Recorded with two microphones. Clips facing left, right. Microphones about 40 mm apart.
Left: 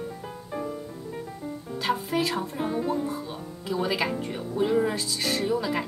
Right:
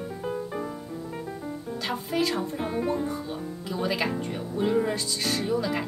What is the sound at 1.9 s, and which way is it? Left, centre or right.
Speech, centre.